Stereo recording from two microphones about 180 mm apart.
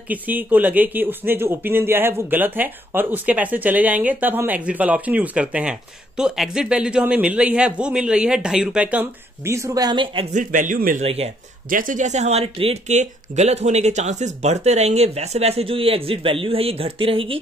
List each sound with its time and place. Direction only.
0.1 s speech: 10° right (ahead or behind)
10.3 s a man's voice: 45° right (ahead or behind)